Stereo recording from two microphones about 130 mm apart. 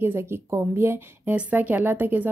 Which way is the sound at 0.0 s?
15° right (ahead or behind).